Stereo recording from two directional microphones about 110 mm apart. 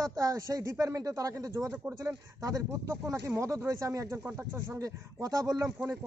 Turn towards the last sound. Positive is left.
turn(degrees=-30)  # may be behind; listen again after turning